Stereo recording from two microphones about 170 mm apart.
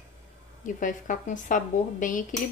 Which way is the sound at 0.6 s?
50° left (ahead or behind).